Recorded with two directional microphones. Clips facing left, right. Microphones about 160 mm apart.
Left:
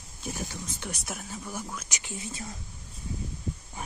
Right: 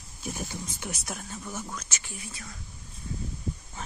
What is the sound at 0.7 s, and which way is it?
Speech, 5° right (ahead or behind).